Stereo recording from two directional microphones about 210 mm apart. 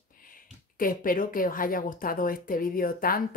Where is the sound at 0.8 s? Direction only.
40° left (ahead or behind).